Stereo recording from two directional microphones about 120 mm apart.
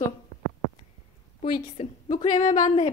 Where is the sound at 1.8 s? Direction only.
50° left (ahead or behind).